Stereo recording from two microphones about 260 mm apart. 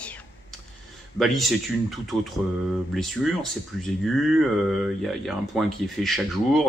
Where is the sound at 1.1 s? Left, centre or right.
Centre.